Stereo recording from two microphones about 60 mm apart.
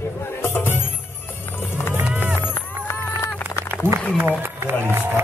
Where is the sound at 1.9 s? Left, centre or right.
Right.